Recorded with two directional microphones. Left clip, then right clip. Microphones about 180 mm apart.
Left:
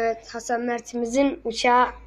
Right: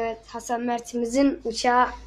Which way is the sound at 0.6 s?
15° right (ahead or behind).